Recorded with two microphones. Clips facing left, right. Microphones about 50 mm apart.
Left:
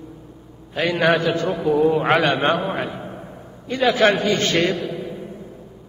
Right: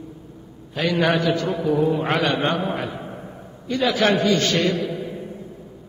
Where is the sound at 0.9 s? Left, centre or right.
Centre.